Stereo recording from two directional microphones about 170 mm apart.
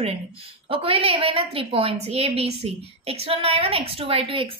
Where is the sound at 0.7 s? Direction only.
35° right (ahead or behind).